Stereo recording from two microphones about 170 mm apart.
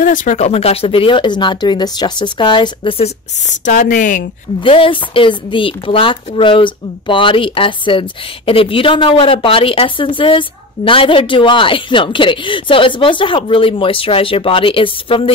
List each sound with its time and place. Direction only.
0.0 s speech: 50° left (ahead or behind); by 3.1 s 30° left (ahead or behind)
3.4 s speech: 50° left (ahead or behind)
4.6 s a woman's voice: 30° left (ahead or behind)